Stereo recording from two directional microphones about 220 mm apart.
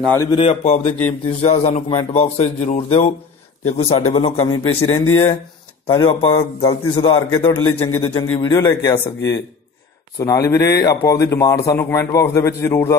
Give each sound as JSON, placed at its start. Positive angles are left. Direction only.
{"t": 0.0, "sound": "a man's voice", "side_deg": 10}
{"t": 0.4, "sound": "a man's voice", "side_deg": 30}
{"t": 4.7, "sound": "a man's voice", "side_deg": 10}
{"t": 5.9, "sound": "a man's voice", "side_deg": 25}
{"t": 7.2, "sound": "a man's voice", "side_deg": 15}
{"t": 10.1, "sound": "a man's voice", "side_deg": 15}